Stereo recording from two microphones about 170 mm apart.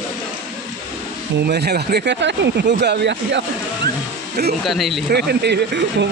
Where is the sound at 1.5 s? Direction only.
70° right (ahead or behind); by 3.4 s 90° right.